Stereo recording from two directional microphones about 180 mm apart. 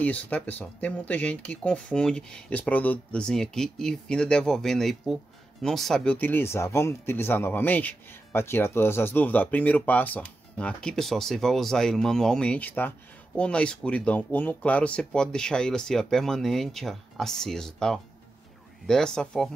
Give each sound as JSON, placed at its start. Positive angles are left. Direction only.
{"t": 0.0, "sound": "speech", "side_deg": 10}